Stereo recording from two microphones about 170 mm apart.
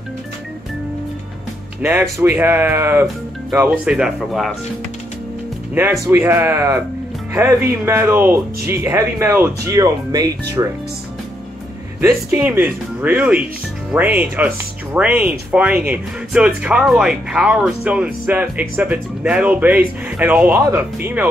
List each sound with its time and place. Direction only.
1.8 s speech: 15° right (ahead or behind)
5.8 s speech: 15° right (ahead or behind)
7.8 s speech: 15° right (ahead or behind)
12.0 s speech: 15° right (ahead or behind)